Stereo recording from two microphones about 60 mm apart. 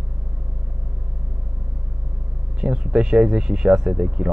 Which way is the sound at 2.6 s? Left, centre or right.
Centre.